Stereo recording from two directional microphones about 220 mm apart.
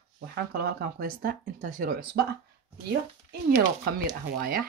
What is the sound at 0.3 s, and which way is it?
Speech, 45° right (ahead or behind).